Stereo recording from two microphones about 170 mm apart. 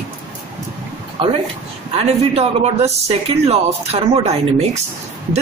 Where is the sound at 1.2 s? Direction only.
30° right (ahead or behind).